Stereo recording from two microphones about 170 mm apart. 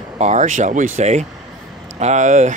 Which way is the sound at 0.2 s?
45° right (ahead or behind).